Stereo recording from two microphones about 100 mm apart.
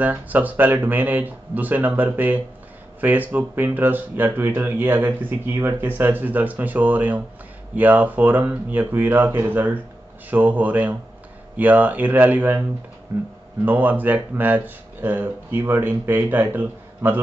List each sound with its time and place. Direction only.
0.0 s speech: 15° right (ahead or behind)